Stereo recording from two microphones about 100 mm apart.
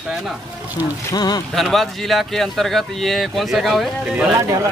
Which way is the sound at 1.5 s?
Centre (ahead or behind).